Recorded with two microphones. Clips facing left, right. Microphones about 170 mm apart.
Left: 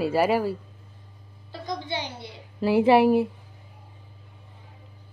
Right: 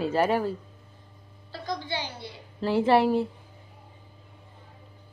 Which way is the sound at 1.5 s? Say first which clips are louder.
Left 1 dB; 20° left (ahead or behind).